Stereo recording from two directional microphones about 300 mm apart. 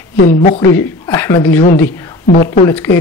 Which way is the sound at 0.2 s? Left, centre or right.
Left.